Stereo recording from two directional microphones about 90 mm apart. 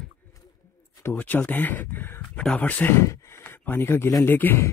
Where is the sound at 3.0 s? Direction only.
25° left (ahead or behind).